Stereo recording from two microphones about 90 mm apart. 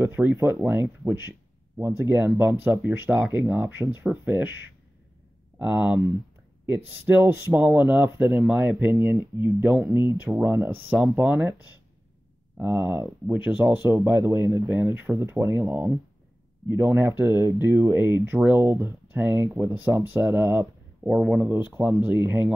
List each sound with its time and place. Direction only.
0.0 s speech: 20° right (ahead or behind)
5.6 s speech: 15° right (ahead or behind)
8.9 s speech: 30° right (ahead or behind)
21.1 s speech: 10° right (ahead or behind)